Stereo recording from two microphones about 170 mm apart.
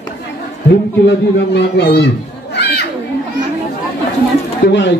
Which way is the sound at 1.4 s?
85° left.